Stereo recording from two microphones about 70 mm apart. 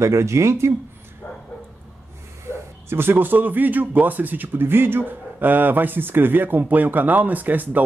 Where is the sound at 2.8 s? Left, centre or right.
Right.